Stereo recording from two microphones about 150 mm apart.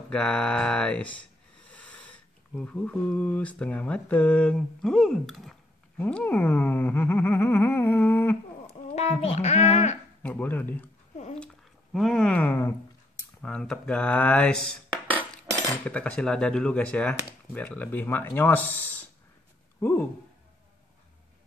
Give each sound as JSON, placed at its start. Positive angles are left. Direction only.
{"t": 0.1, "sound": "speech", "side_deg": 5}
{"t": 8.9, "sound": "a child's voice", "side_deg": 45}
{"t": 10.2, "sound": "speech", "side_deg": 10}